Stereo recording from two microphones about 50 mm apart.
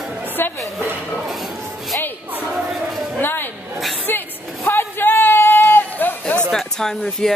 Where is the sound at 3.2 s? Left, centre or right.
Left.